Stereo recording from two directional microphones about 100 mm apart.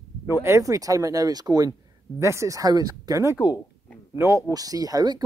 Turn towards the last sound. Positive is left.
turn(degrees=-40)  # may be behind; listen again after turning